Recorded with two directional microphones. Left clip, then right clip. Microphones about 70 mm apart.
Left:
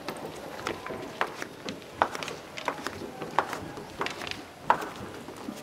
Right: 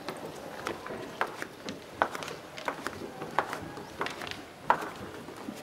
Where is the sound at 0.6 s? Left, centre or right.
Centre.